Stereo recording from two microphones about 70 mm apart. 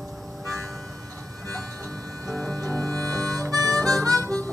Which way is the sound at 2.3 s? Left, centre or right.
Centre.